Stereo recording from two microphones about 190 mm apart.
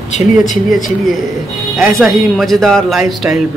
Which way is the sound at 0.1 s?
40° left (ahead or behind).